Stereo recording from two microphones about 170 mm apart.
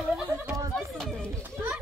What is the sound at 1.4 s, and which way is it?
Children playing, 10° right (ahead or behind).